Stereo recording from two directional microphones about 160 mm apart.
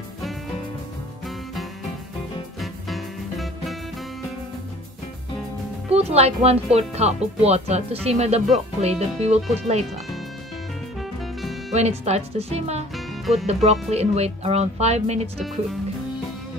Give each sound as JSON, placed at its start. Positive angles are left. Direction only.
{"t": 1.2, "sound": "music", "side_deg": 0}
{"t": 5.9, "sound": "speech", "side_deg": -40}
{"t": 11.0, "sound": "music", "side_deg": 0}
{"t": 11.7, "sound": "speech", "side_deg": -40}
{"t": 12.9, "sound": "music", "side_deg": 0}
{"t": 13.5, "sound": "speech", "side_deg": -40}